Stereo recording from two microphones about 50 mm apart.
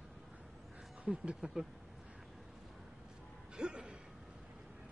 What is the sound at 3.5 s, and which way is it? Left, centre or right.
Music, centre.